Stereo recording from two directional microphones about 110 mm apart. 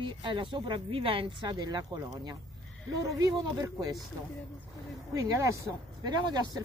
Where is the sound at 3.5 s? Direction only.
35° right (ahead or behind).